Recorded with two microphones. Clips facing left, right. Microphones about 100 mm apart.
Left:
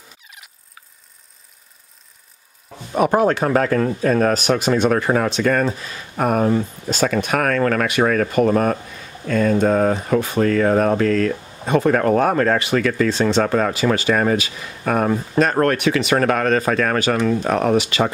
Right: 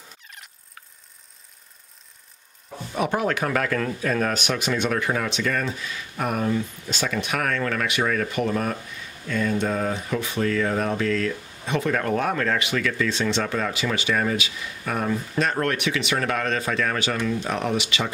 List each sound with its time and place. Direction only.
2.9 s speech: 45° left (ahead or behind)